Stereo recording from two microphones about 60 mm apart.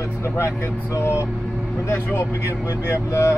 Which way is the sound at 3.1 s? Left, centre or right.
Left.